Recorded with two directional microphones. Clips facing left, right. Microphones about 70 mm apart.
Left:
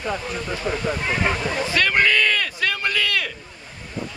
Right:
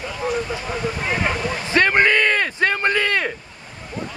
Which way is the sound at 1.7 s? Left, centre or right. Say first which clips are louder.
Right 4 dB; right.